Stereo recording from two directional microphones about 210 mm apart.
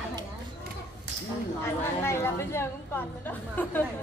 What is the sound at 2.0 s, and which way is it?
A woman's voice, 10° left (ahead or behind).